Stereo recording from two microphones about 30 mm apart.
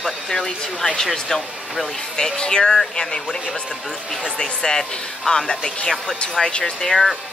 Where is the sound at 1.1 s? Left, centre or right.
Centre.